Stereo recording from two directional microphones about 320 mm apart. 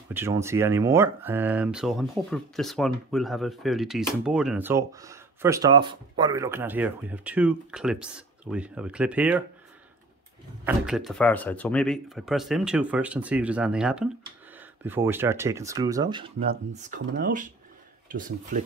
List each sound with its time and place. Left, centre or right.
0.1 s speech: centre
10.6 s speech: centre; by 18.6 s right